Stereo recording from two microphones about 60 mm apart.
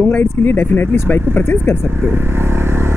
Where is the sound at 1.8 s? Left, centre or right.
Right.